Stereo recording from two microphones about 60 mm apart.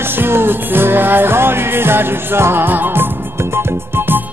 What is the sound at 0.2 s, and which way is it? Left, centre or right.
Music, right.